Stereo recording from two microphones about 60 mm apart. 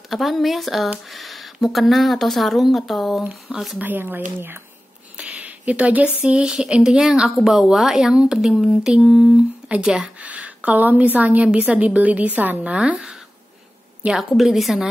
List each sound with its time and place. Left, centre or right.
0.1 s speech: centre
3.8 s speech: right
5.1 s a sound: right
6.2 s a woman's voice: centre
14.1 s speech: centre